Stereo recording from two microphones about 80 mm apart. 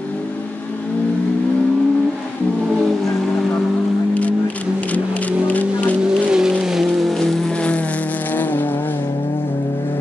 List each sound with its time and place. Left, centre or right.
4.1 s a sound: centre
6.0 s vehicle: centre
7.2 s vehicle: centre